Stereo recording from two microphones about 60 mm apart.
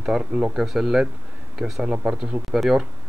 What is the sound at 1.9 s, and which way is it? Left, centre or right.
Speech, right.